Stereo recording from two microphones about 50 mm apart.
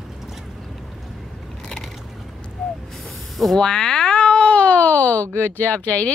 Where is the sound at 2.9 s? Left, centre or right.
Centre.